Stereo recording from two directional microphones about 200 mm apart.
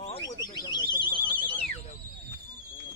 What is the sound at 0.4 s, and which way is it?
Alarm, 20° left (ahead or behind).